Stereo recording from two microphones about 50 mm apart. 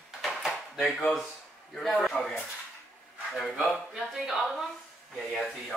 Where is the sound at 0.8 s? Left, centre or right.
Left.